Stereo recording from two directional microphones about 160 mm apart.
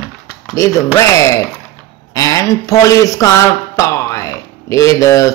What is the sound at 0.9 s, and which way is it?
Speech, 20° left (ahead or behind).